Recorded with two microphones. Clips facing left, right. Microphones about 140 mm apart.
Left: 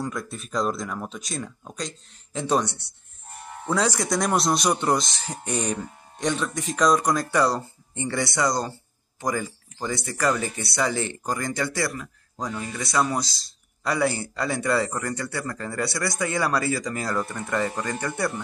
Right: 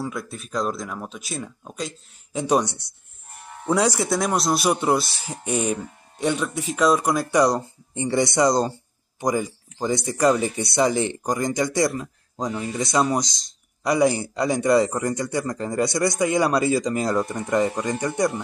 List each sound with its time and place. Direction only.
0.0 s speech: 5° right (ahead or behind)